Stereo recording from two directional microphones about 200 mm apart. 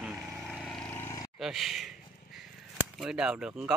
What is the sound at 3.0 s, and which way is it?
Speech, 5° right (ahead or behind).